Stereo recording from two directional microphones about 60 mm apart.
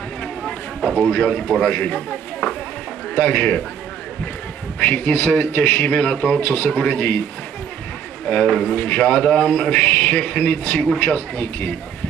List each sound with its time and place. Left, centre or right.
0.8 s a sound: centre
1.2 s speech: centre
2.0 s speech: centre
3.2 s a man's voice: left
4.7 s a man's voice: left
6.4 s a man's voice: left
6.7 s speech: centre
7.0 s a man's voice: left
8.3 s speech: centre
8.7 s a man's voice: left